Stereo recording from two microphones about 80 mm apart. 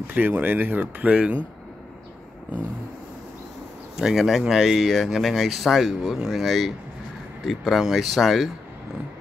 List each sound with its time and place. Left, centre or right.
0.0 s speech: right
3.9 s speech: centre